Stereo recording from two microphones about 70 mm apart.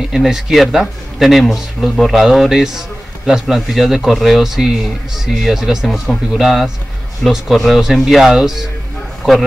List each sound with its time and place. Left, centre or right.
0.1 s a man's voice: centre